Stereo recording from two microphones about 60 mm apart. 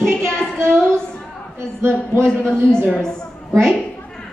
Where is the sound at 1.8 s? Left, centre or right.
Right.